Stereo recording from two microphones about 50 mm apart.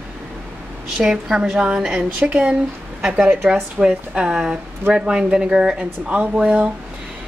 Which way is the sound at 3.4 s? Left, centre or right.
Centre.